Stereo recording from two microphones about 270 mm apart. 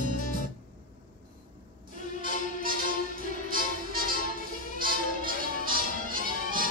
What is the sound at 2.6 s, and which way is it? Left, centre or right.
Music, right.